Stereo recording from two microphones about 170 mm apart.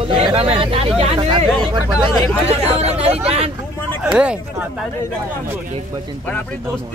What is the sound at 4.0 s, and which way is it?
Speech, 5° right (ahead or behind).